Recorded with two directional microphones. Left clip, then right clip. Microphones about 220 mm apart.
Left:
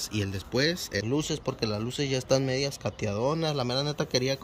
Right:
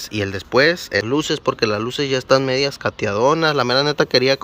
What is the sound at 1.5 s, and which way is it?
Speech, 35° right (ahead or behind).